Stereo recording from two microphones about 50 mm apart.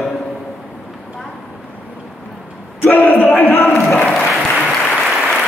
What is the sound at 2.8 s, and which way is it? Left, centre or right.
Speech, left.